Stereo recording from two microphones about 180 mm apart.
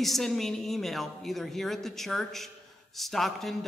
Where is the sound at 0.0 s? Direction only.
Centre (ahead or behind).